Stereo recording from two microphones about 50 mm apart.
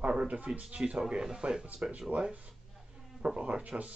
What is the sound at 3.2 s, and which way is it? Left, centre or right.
Speech, right.